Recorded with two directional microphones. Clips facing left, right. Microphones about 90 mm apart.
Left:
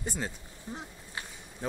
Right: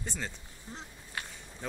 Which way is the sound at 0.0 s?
10° left (ahead or behind).